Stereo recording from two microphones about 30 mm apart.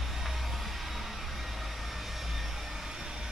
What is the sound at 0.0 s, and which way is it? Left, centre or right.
Music, centre.